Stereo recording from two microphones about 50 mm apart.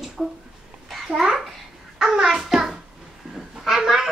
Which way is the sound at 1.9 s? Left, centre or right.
Centre.